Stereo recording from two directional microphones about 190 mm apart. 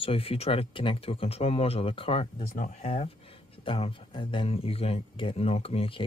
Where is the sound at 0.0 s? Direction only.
30° left (ahead or behind).